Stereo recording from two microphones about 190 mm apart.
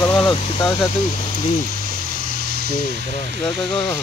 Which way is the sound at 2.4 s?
55° right (ahead or behind).